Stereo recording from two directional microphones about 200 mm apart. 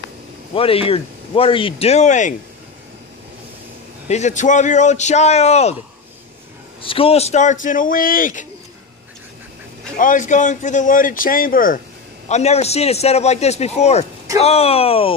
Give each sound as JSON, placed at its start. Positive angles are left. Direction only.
{"t": 0.6, "sound": "speech", "side_deg": 30}
{"t": 4.1, "sound": "speech", "side_deg": 35}
{"t": 6.8, "sound": "speech", "side_deg": 25}
{"t": 9.9, "sound": "speech", "side_deg": 40}
{"t": 12.3, "sound": "speech", "side_deg": 35}